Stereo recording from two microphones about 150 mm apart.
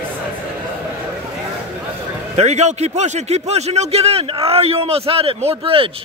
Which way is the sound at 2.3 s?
50° right (ahead or behind).